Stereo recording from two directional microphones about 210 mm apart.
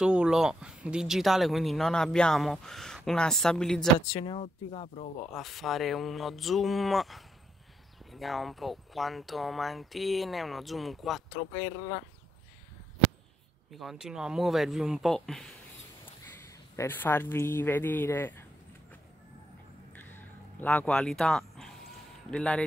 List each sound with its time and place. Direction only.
0.0 s speech: 5° right (ahead or behind)
4.1 s speech: 20° left (ahead or behind)
5.3 s speech: centre (ahead or behind)
13.7 s speech: centre (ahead or behind)
16.7 s speech: 10° left (ahead or behind)
19.9 s a sound: 10° left (ahead or behind)
22.3 s speech: 5° left (ahead or behind)